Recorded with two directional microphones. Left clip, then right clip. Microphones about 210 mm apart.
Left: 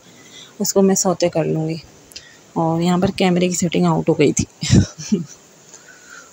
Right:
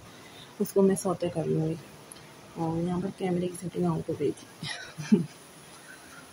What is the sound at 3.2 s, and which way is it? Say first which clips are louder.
Speech: left 14 dB; 40° left (ahead or behind).